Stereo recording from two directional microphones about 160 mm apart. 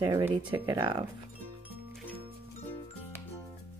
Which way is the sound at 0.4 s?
30° right (ahead or behind).